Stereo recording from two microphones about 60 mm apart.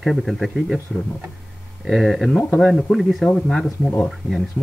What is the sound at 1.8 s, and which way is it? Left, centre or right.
Speech, centre.